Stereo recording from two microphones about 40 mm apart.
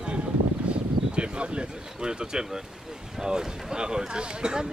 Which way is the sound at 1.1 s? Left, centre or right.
Right.